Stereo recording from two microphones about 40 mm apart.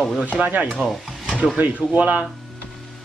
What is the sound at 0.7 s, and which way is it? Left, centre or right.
Speech, right.